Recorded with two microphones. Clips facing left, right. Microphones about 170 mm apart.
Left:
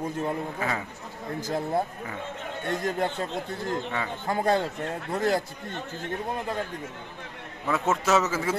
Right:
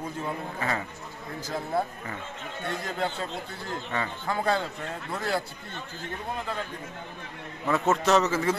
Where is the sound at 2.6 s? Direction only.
50° left (ahead or behind).